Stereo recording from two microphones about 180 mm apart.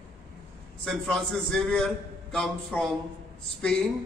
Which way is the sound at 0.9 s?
5° left (ahead or behind).